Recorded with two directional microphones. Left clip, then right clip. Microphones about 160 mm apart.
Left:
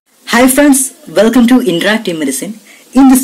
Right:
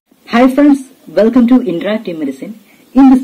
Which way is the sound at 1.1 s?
60° left (ahead or behind).